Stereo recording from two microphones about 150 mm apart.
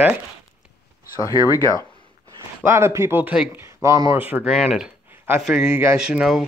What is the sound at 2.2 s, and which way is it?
Speech, 20° right (ahead or behind).